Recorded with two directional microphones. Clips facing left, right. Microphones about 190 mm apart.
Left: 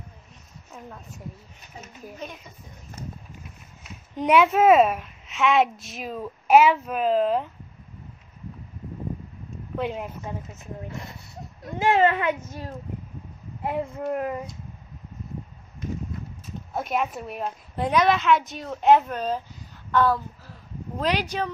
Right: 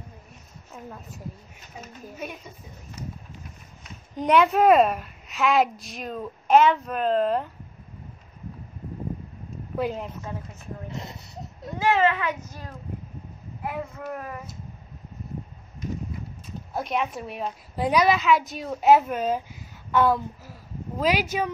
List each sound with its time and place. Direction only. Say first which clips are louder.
0.7 s a woman's voice: right 1 dB; 5° right (ahead or behind)
3.8 s a woman's voice: left 1 dB; centre (ahead or behind)
9.8 s a woman's voice: right 1 dB; centre (ahead or behind)
10.9 s speech: right 1 dB; 20° right (ahead or behind)
11.9 s a child's voice: left 2 dB; 30° left (ahead or behind)
16.7 s a woman's voice: left 1 dB; centre (ahead or behind)
19.9 s a sound: even; 10° right (ahead or behind)
21.0 s speech: right 2 dB; 5° right (ahead or behind)